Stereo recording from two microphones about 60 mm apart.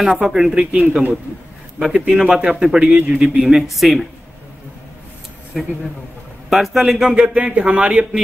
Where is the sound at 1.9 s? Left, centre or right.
Centre.